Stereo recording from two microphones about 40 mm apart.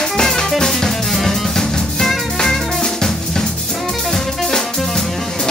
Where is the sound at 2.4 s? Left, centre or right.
Centre.